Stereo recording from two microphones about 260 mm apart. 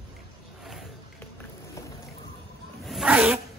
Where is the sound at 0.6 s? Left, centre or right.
Centre.